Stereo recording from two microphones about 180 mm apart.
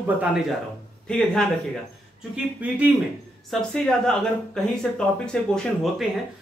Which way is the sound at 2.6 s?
10° right (ahead or behind).